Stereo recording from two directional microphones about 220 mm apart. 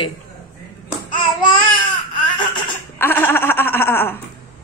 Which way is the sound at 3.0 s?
10° left (ahead or behind).